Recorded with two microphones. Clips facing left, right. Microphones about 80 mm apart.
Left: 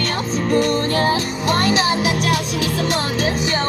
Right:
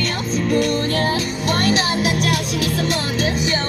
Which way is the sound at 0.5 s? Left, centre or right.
Left.